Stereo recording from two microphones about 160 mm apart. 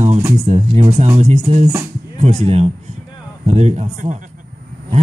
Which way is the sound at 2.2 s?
45° right (ahead or behind).